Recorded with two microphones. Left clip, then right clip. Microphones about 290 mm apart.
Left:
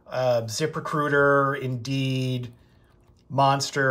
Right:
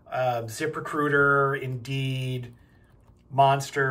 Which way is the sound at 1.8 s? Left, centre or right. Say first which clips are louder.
Left 4 dB; centre.